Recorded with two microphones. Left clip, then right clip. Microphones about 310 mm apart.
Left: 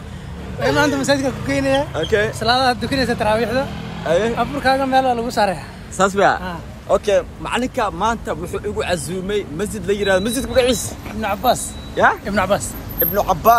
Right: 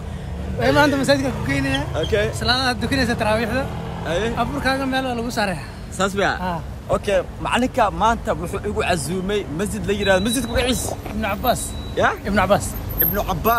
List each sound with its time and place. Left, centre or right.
0.6 s a woman's voice: centre
1.5 s speech: centre
2.0 s speech: left
2.4 s speech: centre
4.1 s speech: centre
4.4 s speech: centre
5.9 s speech: centre
6.9 s speech: centre
11.9 s speech: centre
12.3 s speech: centre
13.0 s speech: centre